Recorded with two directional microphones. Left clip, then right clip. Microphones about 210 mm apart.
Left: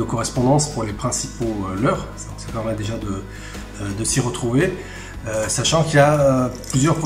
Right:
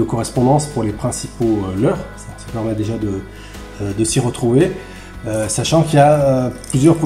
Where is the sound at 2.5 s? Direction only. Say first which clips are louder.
Right 3 dB; 15° right (ahead or behind).